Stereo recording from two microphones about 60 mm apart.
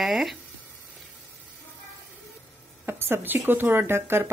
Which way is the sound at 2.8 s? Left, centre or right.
Right.